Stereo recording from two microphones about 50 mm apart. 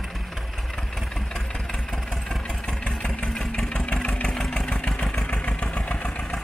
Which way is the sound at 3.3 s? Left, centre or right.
Centre.